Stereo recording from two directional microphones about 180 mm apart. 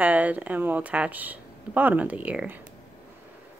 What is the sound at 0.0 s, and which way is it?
Speech, 10° right (ahead or behind).